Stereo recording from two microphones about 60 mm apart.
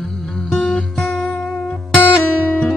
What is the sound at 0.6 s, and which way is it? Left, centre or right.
Music, centre.